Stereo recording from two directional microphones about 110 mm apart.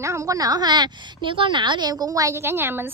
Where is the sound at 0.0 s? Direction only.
30° right (ahead or behind).